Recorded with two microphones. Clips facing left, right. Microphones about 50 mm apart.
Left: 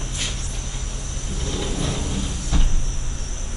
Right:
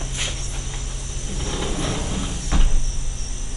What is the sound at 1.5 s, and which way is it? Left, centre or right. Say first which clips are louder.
Train: right 1 dB; right.